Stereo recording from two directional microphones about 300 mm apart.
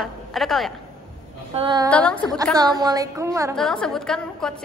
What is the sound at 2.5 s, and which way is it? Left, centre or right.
A woman's voice, centre.